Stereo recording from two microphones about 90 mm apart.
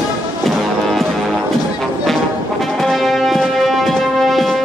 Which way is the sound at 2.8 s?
Centre (ahead or behind).